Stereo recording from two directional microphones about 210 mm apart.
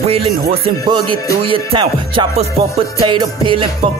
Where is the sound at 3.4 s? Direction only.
25° right (ahead or behind).